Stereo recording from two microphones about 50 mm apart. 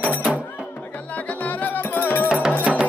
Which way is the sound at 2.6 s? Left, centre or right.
Right.